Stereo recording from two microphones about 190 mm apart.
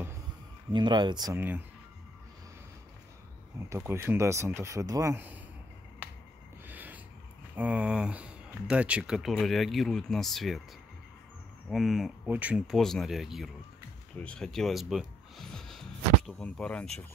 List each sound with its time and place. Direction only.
0.7 s speech: 25° right (ahead or behind)
3.6 s speech: 15° right (ahead or behind)
6.7 s a sound: 10° right (ahead or behind)
7.5 s speech: 5° right (ahead or behind)
11.7 s speech: centre (ahead or behind)